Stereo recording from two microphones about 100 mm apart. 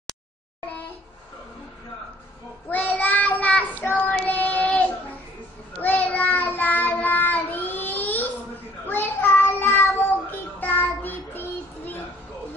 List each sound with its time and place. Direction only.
2.7 s child singing: 15° left (ahead or behind)